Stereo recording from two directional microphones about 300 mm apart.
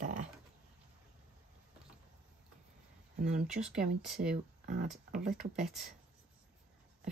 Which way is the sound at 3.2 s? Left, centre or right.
Right.